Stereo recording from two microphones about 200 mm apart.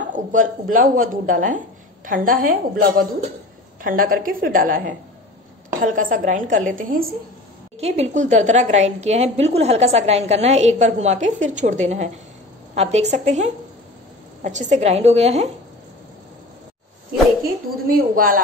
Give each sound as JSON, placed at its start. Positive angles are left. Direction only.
{"t": 0.1, "sound": "a woman's voice", "side_deg": -40}
{"t": 7.8, "sound": "a woman's voice", "side_deg": -30}
{"t": 17.8, "sound": "a woman's voice", "side_deg": -45}